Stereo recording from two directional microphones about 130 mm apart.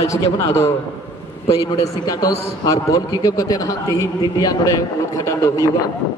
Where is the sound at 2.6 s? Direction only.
25° left (ahead or behind).